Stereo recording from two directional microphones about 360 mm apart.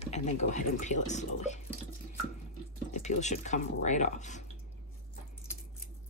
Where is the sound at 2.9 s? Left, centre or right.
Centre.